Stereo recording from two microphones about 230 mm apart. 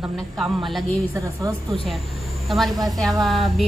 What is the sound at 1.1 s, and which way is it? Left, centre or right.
Speech, centre.